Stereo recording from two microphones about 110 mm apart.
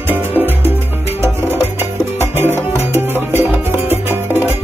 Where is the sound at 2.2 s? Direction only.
20° right (ahead or behind).